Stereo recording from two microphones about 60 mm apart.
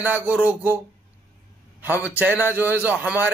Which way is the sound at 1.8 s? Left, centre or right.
Right.